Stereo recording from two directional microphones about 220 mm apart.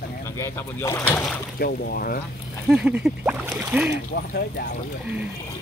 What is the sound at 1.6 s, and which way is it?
Speech, 45° left (ahead or behind).